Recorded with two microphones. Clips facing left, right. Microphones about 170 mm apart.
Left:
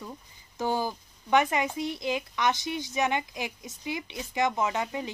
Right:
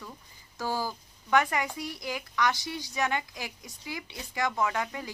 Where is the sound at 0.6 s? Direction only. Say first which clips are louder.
Left 3 dB; 20° left (ahead or behind).